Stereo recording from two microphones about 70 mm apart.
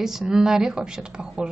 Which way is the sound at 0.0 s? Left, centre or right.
Centre.